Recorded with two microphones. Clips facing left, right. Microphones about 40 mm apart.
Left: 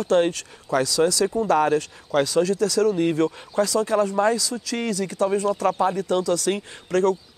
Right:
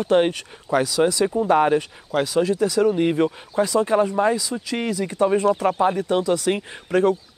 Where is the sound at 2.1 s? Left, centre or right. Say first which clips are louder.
Even; centre.